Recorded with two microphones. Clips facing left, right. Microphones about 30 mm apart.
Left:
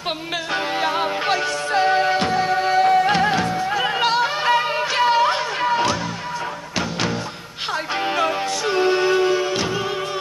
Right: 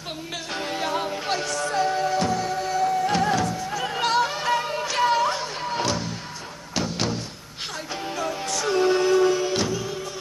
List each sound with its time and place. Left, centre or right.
0.5 s music: left
3.1 s music: left; by 5.9 s centre
8.6 s music: left